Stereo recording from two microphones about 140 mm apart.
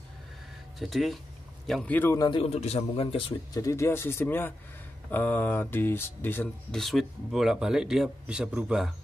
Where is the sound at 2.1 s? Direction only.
30° left (ahead or behind).